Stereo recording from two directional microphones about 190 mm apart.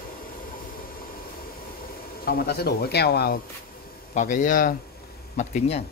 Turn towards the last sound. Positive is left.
turn(degrees=35)  # may be behind; listen again after turning